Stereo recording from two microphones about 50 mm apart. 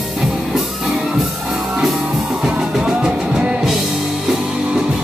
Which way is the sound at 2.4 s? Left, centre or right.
Centre.